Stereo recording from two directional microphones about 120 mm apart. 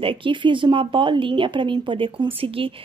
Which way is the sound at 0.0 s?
45° right (ahead or behind).